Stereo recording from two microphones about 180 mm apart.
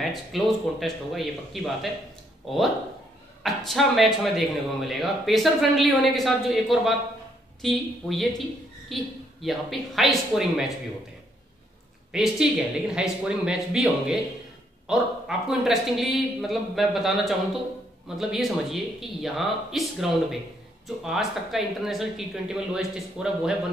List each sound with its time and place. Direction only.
0.0 s speech: centre (ahead or behind)
3.4 s speech: centre (ahead or behind)
12.1 s speech: 5° right (ahead or behind)